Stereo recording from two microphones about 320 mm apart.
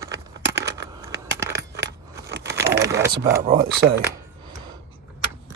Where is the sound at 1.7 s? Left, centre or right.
Right.